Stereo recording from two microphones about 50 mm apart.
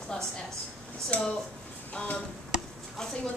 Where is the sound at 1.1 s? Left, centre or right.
Left.